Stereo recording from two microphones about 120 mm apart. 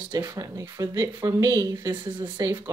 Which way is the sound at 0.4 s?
25° right (ahead or behind).